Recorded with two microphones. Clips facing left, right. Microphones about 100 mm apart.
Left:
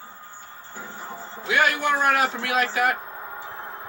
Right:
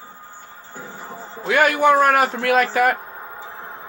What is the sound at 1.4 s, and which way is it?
A man's voice, 50° right (ahead or behind).